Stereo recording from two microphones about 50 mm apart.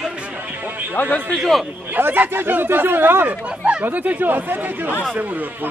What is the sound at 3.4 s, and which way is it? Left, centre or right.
Speech, right.